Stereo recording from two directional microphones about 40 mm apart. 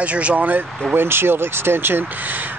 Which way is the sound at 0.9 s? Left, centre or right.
Right.